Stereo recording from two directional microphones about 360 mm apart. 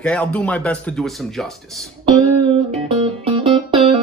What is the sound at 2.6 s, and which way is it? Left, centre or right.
Music, centre.